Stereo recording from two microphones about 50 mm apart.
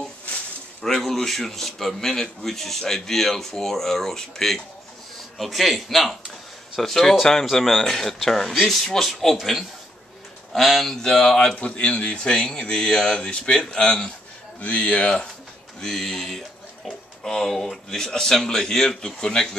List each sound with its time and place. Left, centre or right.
0.8 s a man's voice: centre
11.0 s speech: centre
15.8 s speech: centre